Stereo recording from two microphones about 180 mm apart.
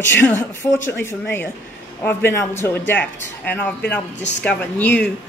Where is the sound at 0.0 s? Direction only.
10° left (ahead or behind).